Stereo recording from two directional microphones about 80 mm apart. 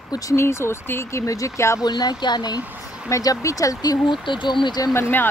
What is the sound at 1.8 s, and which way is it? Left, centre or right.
Speech, left.